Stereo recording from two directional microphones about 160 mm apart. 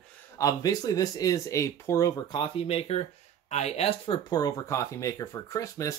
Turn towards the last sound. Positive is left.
turn(degrees=20)  # may be behind; listen again after turning